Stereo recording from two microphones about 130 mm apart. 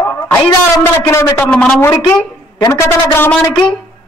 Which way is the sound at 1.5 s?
10° left (ahead or behind).